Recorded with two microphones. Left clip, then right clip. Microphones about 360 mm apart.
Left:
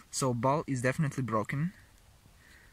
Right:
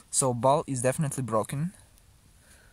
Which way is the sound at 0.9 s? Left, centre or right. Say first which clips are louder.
Right 4 dB; centre.